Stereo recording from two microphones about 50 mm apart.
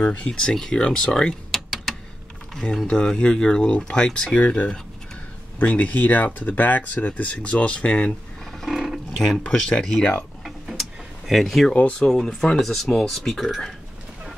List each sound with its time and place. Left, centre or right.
0.0 s speech: left
0.3 s speech: centre
1.5 s a sound: centre
2.9 s speech: centre
8.6 s roaring cats: centre
9.4 s speech: centre
10.4 s a sound: centre
12.1 s speech: centre